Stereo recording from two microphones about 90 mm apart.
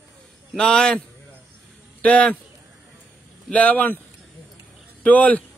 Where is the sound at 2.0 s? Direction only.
15° left (ahead or behind).